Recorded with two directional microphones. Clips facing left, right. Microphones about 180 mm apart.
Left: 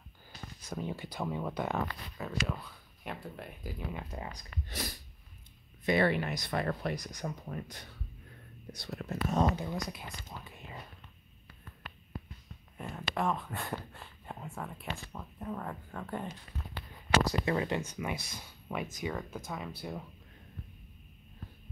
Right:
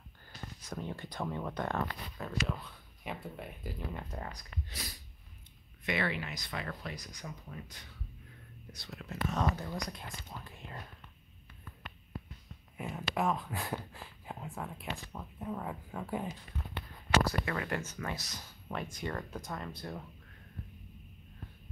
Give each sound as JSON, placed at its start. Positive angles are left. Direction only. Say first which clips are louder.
{"t": 0.6, "sound": "speech", "louder": "left 3 dB", "side_deg": 0}
{"t": 4.6, "sound": "speech", "louder": "left 6 dB", "side_deg": 50}
{"t": 9.8, "sound": "speech", "louder": "left 1 dB", "side_deg": 5}
{"t": 12.7, "sound": "speech", "louder": "right 1 dB", "side_deg": -5}
{"t": 17.3, "sound": "speech", "louder": "left 4 dB", "side_deg": 20}